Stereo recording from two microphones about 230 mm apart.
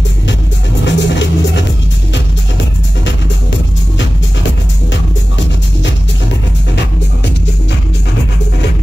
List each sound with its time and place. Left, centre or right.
0.8 s music: left